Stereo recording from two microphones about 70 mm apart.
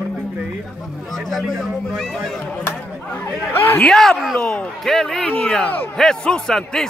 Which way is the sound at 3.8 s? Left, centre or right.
Centre.